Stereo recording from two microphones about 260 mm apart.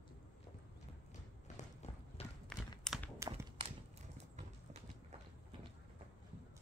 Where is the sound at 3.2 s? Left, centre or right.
Centre.